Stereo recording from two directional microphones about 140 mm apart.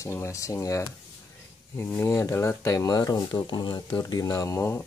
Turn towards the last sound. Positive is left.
turn(degrees=20)  # may be behind; listen again after turning